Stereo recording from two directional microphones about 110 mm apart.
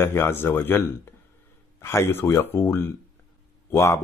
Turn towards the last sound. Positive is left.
turn(degrees=25)  # may be behind; listen again after turning